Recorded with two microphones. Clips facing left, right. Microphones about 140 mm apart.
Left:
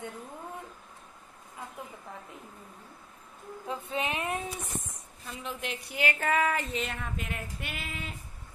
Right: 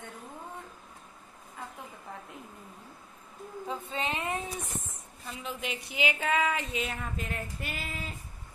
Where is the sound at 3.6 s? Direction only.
Centre (ahead or behind).